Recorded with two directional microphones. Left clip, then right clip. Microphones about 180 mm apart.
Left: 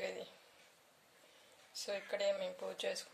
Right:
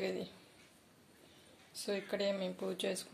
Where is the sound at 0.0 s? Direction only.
Centre (ahead or behind).